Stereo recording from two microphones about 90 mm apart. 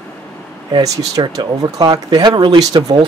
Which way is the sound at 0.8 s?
45° right (ahead or behind).